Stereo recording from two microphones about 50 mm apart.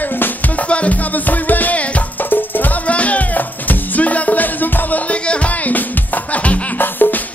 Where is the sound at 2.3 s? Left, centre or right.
Left.